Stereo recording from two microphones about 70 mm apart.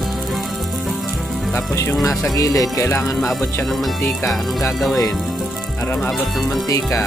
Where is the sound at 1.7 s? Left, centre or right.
Left.